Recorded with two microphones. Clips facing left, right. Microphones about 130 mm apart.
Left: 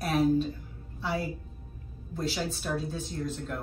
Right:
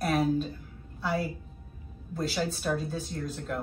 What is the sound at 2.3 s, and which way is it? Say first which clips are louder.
Speech: right 2 dB; centre (ahead or behind).